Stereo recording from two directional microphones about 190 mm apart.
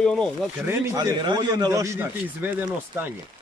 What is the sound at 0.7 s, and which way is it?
Speech, 20° right (ahead or behind).